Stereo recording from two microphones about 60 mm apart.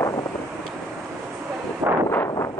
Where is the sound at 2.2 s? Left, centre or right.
Left.